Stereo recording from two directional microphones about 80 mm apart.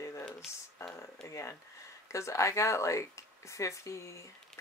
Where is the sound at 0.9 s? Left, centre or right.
Left.